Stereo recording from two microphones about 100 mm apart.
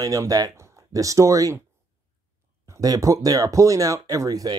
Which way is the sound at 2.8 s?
35° right (ahead or behind).